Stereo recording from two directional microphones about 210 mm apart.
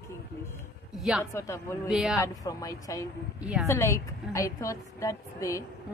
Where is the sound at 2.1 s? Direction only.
15° left (ahead or behind).